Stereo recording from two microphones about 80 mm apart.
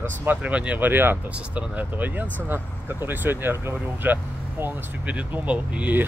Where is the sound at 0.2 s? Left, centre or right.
Centre.